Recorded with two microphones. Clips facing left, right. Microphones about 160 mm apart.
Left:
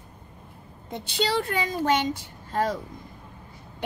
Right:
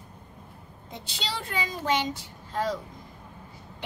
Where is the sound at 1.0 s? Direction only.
60° left (ahead or behind).